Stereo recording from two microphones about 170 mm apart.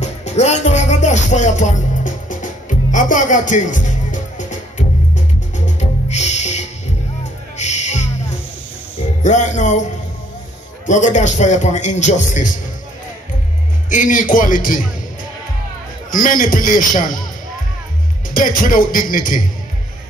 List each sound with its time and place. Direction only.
0.0 s music: 40° left (ahead or behind)
9.2 s a man's voice: 45° left (ahead or behind)
10.9 s a man's voice: 45° left (ahead or behind)
13.8 s a man's voice: 50° left (ahead or behind)
16.1 s a man's voice: 55° left (ahead or behind)
18.3 s a man's voice: 55° left (ahead or behind)